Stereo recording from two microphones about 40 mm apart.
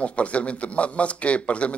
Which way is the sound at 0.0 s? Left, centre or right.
Left.